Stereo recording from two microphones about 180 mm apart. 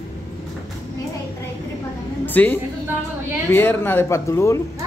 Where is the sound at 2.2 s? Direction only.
10° left (ahead or behind).